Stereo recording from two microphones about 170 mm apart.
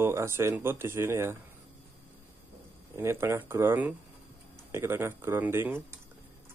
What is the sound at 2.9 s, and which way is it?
Speech, 15° right (ahead or behind).